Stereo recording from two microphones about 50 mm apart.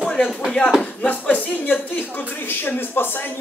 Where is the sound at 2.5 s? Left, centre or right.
Left.